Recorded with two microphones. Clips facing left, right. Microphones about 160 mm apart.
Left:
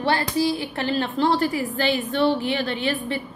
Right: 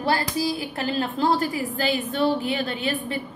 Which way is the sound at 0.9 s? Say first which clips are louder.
Left 2 dB; 40° right (ahead or behind).